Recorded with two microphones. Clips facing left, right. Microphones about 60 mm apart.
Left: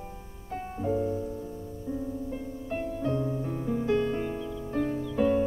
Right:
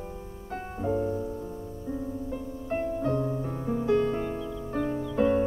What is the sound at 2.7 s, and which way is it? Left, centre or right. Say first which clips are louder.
Music: right 2 dB; right.